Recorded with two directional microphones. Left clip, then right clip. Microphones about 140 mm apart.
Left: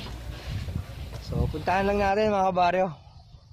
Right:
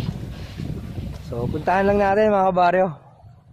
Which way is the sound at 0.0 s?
Centre (ahead or behind).